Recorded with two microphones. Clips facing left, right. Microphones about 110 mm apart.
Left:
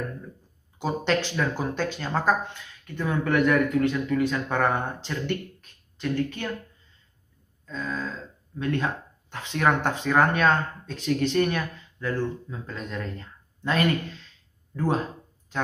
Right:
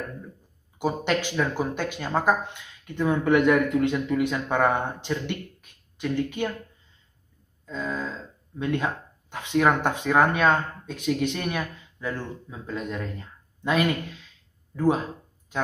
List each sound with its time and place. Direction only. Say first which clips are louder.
0.7 s speech: even; 15° right (ahead or behind)
7.6 s speech: right 1 dB; 15° right (ahead or behind)